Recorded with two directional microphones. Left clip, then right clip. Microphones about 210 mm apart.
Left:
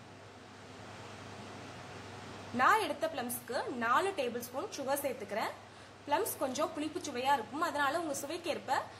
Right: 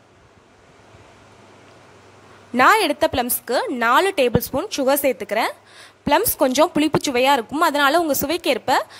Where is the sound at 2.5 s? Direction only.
50° right (ahead or behind).